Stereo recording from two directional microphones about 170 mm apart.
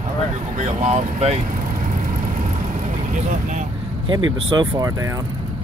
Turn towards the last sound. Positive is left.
turn(degrees=-20)  # may be behind; listen again after turning